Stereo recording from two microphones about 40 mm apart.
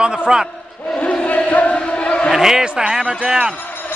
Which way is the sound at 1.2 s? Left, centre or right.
Left.